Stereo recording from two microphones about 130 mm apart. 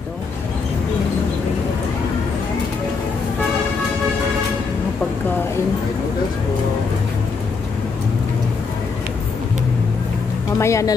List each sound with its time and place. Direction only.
10.6 s speech: 25° left (ahead or behind)